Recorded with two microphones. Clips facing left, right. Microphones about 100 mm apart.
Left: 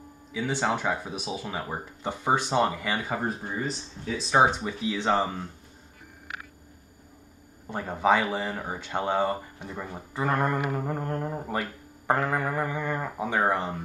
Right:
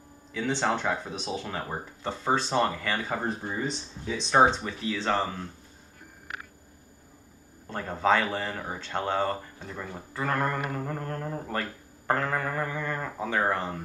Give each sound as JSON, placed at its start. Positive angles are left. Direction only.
{"t": 0.3, "sound": "speech", "side_deg": 10}
{"t": 7.6, "sound": "speech", "side_deg": 10}